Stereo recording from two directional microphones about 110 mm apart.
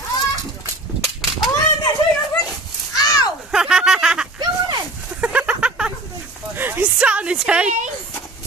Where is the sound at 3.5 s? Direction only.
5° right (ahead or behind).